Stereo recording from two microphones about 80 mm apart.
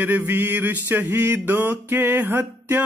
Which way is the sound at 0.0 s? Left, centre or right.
Right.